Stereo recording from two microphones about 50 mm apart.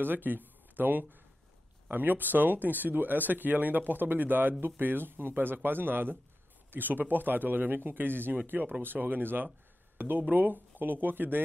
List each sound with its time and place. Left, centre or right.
0.0 s speech: right